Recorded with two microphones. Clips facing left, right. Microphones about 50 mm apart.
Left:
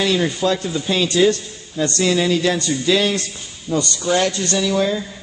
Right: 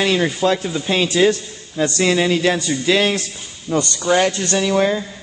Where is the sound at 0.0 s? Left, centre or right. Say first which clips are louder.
Right 1 dB; right.